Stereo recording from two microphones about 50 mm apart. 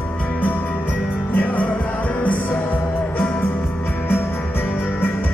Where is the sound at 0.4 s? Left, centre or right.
Left.